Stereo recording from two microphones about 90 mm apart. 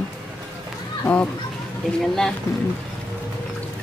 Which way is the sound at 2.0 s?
5° left (ahead or behind).